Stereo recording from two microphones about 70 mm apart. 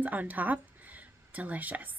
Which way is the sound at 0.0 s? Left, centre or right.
Right.